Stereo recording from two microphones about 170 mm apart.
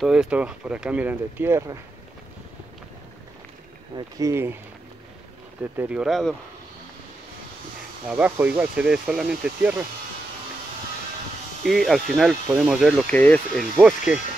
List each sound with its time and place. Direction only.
0.0 s speech: 5° right (ahead or behind)
3.9 s speech: 20° right (ahead or behind)
5.6 s speech: 10° right (ahead or behind)
8.1 s speech: 10° right (ahead or behind)
11.6 s speech: centre (ahead or behind)
13.8 s speech: 5° right (ahead or behind)